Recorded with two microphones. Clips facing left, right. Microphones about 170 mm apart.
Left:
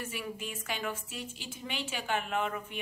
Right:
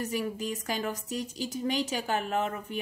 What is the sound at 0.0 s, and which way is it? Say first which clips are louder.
Speech: right 7 dB; 40° right (ahead or behind).